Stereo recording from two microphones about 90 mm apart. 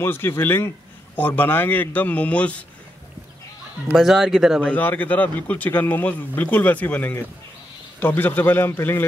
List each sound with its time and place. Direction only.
0.0 s speech: 25° left (ahead or behind)
3.9 s speech: centre (ahead or behind)
4.6 s speech: 20° left (ahead or behind)